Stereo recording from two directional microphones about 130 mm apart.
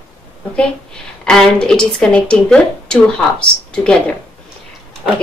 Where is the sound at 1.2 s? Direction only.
5° left (ahead or behind).